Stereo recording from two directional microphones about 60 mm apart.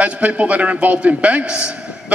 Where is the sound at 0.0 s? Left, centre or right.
Right.